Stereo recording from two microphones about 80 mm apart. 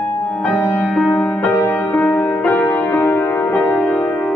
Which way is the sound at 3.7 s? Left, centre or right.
Centre.